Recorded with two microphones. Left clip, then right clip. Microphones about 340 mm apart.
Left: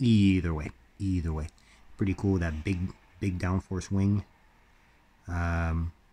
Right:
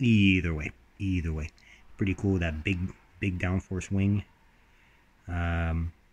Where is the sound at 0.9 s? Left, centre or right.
Left.